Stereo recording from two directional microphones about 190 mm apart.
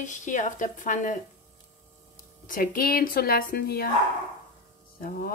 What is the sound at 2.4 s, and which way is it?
Speech, 45° left (ahead or behind).